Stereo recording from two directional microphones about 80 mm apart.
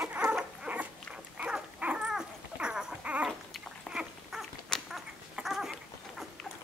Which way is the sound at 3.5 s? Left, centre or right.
Centre.